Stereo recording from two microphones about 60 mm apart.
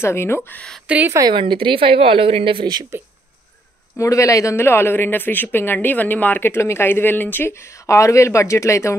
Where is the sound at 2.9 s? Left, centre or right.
Right.